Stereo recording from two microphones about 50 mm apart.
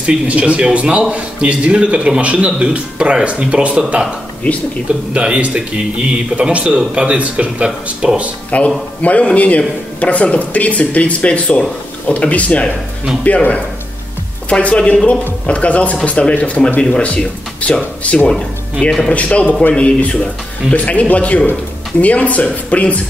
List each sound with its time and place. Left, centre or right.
0.0 s a man's voice: right
5.1 s a man's voice: right
8.5 s speech: left
18.3 s speech: centre
19.1 s speech: left